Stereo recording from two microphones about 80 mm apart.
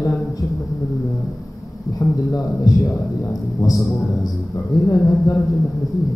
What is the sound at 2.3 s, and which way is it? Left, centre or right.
A man's voice, left.